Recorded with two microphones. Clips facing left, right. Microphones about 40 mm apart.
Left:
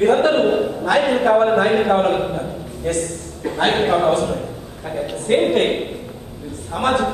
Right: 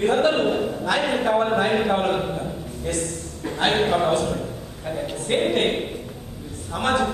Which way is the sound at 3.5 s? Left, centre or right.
Centre.